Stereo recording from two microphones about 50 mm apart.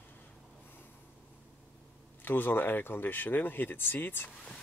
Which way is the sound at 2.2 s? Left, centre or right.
Left.